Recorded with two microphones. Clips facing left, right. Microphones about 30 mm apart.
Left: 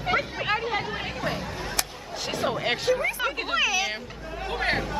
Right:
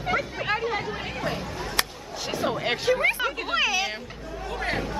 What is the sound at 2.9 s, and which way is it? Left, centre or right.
Speech, right.